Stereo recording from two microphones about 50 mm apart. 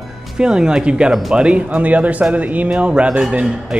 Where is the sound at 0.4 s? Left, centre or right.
Centre.